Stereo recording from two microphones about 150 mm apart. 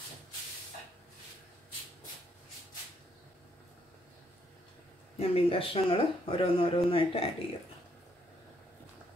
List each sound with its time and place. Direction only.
5.2 s speech: 40° left (ahead or behind)